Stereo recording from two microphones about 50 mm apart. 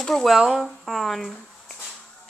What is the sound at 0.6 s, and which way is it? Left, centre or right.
Speech, centre.